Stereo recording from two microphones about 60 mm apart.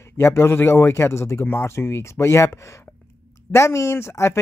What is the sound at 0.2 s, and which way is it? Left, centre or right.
Speech, left.